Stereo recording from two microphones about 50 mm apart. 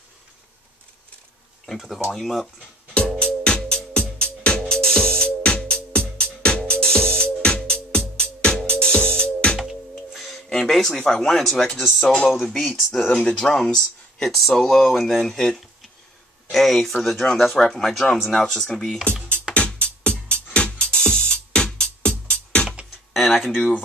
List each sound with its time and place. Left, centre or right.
1.7 s speech: centre
3.2 s music: centre
10.1 s music: centre
10.5 s speech: centre
19.5 s music: centre
19.8 s music: left
23.1 s speech: centre